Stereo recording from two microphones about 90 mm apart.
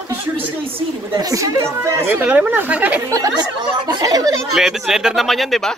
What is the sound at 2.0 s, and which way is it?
Speech, 20° right (ahead or behind).